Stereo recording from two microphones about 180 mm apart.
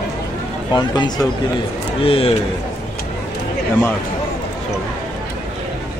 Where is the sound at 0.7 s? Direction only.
25° left (ahead or behind).